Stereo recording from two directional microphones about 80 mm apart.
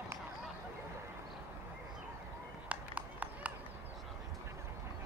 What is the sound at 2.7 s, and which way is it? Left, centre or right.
Run, centre.